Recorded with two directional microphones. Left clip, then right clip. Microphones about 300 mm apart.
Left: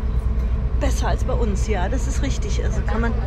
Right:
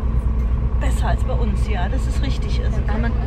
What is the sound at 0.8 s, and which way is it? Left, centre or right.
Speech, centre.